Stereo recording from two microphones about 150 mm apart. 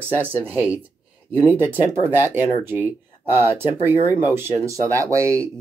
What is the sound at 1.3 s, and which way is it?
Speech, 10° left (ahead or behind).